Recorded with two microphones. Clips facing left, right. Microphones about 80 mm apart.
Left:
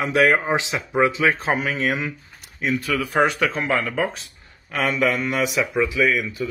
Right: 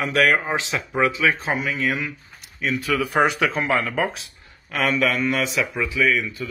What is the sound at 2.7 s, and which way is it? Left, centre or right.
Speech, centre.